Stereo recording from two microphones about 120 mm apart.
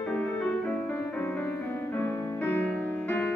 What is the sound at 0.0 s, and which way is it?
Music, 10° left (ahead or behind).